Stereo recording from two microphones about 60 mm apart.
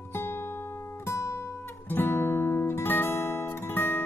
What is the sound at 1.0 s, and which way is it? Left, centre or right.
Guitar, left.